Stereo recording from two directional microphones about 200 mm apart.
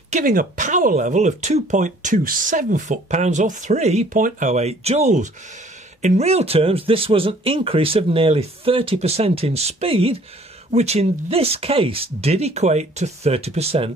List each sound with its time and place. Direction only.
0.1 s speech: 45° right (ahead or behind)